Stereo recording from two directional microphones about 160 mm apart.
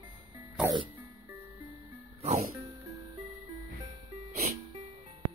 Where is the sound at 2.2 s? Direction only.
45° right (ahead or behind).